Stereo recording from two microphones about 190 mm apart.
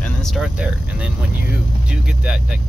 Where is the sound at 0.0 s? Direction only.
Centre (ahead or behind).